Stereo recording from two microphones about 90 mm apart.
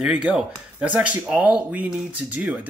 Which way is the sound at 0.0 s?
10° right (ahead or behind).